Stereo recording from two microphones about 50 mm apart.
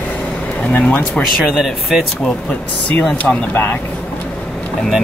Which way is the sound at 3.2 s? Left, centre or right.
Left.